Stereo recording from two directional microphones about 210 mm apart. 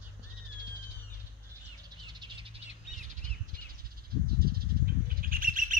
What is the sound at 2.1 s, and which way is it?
Bird, 25° right (ahead or behind).